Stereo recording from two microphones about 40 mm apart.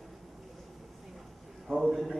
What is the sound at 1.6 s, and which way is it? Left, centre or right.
Speech, centre.